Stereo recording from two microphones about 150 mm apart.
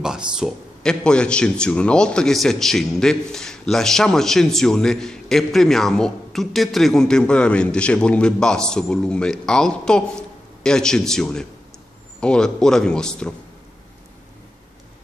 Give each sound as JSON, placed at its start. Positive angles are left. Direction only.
{"t": 0.0, "sound": "speech", "side_deg": -5}
{"t": 1.0, "sound": "a man's voice", "side_deg": 5}